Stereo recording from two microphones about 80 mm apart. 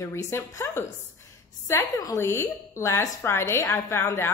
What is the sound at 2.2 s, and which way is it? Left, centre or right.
A woman's voice, left.